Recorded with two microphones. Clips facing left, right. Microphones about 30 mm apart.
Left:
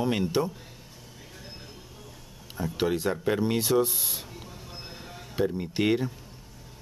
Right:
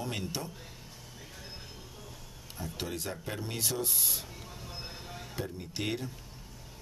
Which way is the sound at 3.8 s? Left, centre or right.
Centre.